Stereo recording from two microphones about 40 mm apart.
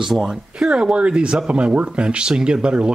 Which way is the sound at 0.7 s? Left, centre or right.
Right.